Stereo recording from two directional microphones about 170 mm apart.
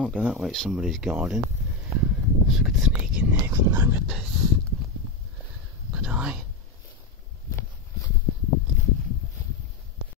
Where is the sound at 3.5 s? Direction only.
20° right (ahead or behind).